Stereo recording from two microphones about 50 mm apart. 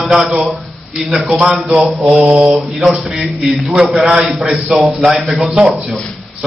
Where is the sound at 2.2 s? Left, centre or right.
Right.